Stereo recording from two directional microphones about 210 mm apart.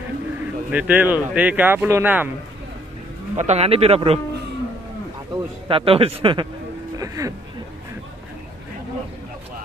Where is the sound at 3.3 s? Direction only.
30° right (ahead or behind).